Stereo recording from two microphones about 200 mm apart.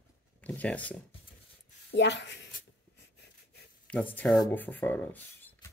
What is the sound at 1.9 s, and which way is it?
Speech, 60° left (ahead or behind).